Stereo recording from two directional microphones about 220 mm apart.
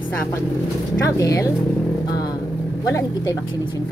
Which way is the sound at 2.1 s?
15° left (ahead or behind).